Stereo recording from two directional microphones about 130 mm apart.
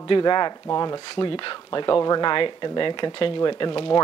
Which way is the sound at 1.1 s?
40° left (ahead or behind).